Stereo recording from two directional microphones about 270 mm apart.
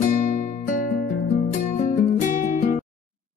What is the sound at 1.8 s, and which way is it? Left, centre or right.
Music, left.